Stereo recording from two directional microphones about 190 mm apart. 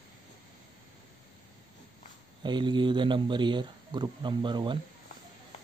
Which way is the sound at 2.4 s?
25° right (ahead or behind).